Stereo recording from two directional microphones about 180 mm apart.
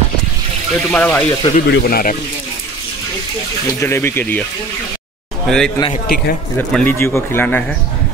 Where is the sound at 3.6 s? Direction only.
15° left (ahead or behind).